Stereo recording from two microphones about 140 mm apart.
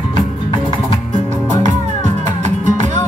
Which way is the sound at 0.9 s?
65° right (ahead or behind).